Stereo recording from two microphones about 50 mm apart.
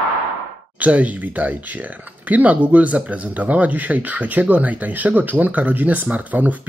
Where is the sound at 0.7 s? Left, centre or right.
Right.